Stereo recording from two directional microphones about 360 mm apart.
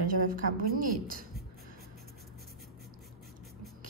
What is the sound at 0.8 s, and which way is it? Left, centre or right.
Speech, right.